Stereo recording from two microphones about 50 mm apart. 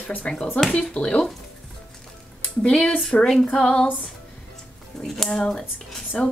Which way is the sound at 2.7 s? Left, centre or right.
Centre.